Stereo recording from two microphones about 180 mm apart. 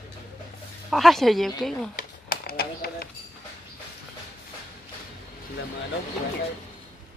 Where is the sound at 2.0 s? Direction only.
55° left (ahead or behind).